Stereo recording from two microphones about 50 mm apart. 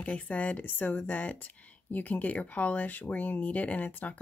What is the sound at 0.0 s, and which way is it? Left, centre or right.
Speech, left.